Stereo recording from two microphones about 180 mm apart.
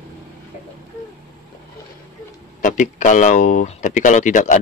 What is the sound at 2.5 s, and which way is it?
Speech, 45° left (ahead or behind).